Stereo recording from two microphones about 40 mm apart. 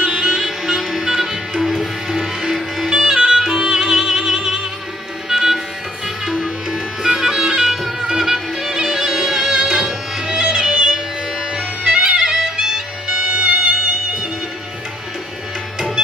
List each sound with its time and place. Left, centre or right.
0.0 s music: right
0.4 s music: centre